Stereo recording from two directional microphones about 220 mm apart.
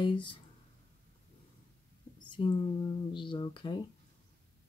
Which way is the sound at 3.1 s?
20° left (ahead or behind).